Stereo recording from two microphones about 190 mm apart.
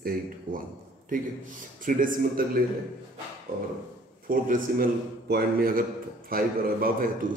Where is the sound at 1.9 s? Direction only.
45° right (ahead or behind).